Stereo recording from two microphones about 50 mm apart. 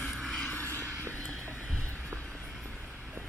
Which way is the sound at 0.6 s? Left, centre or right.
Left.